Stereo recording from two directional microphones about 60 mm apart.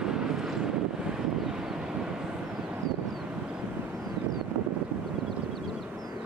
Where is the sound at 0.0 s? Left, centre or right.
Centre.